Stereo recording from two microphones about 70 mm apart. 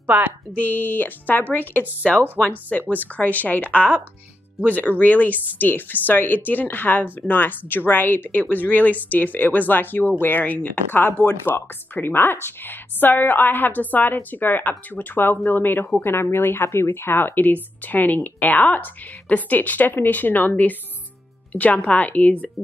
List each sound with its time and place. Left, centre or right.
0.0 s a woman's voice: right
0.5 s speech: left